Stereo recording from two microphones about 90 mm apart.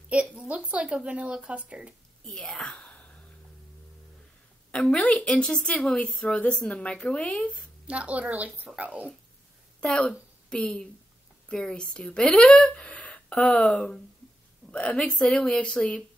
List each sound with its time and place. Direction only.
0.1 s a woman's voice: 10° right (ahead or behind)
2.3 s whispering: 5° left (ahead or behind)
4.6 s a woman's voice: 5° left (ahead or behind)
7.8 s a woman's voice: 15° right (ahead or behind)
9.8 s a woman's voice: 10° left (ahead or behind)